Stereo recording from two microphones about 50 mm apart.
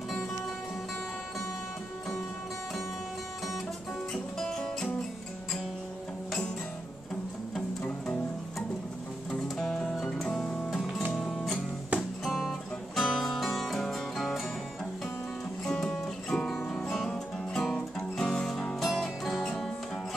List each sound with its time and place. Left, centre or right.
4.1 s music: centre
7.5 s music: centre
9.3 s music: centre
11.9 s music: right
12.3 s music: centre
15.6 s music: centre